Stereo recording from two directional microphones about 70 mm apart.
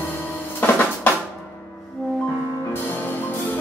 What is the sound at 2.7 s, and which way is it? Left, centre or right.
Music, left.